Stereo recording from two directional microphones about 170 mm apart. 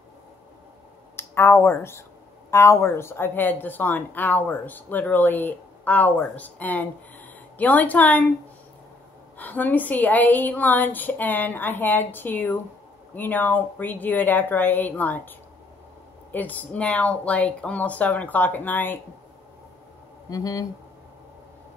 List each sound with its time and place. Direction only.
1.1 s speech: 15° left (ahead or behind)
9.4 s speech: 10° left (ahead or behind)
20.2 s speech: 20° left (ahead or behind)